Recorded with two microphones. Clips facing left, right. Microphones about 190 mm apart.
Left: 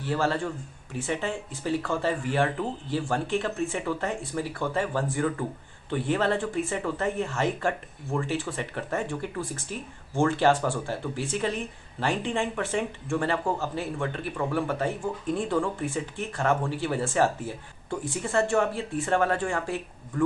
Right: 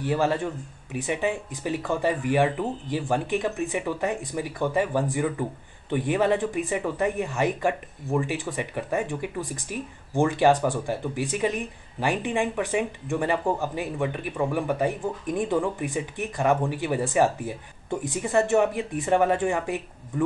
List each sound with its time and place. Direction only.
0.0 s speech: 15° right (ahead or behind)